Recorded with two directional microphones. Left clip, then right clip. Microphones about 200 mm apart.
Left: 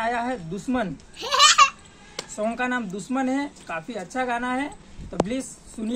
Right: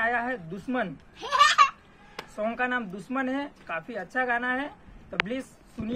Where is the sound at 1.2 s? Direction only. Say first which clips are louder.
Left 4 dB; 40° right (ahead or behind).